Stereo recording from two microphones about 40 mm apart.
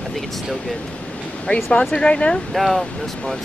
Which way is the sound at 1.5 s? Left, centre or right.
Left.